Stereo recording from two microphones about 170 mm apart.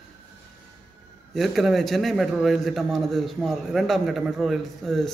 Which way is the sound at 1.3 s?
Centre (ahead or behind).